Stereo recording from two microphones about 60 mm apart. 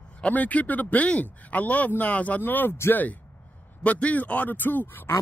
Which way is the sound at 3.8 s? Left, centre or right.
Left.